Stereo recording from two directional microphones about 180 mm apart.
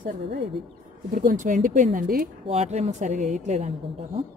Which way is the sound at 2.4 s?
35° right (ahead or behind).